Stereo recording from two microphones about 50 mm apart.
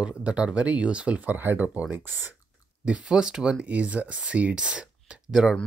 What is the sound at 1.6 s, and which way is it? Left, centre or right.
Speech, right.